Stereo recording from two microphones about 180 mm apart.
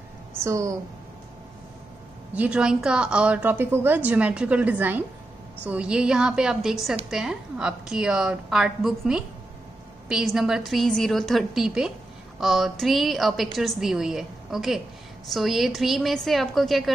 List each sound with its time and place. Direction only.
0.4 s a woman's voice: 15° right (ahead or behind)
2.3 s a woman's voice: 5° right (ahead or behind)